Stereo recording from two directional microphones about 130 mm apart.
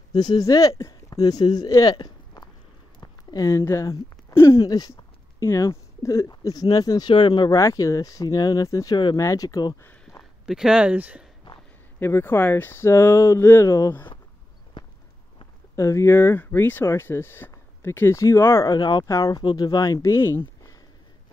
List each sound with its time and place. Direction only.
0.1 s speech: 30° left (ahead or behind)
10.1 s a sound: 20° left (ahead or behind)
10.4 s speech: 5° right (ahead or behind)
12.0 s speech: 15° left (ahead or behind)
14.8 s walk: 35° left (ahead or behind)
15.7 s speech: 20° left (ahead or behind)